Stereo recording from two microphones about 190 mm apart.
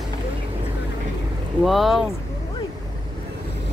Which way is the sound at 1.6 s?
Centre (ahead or behind).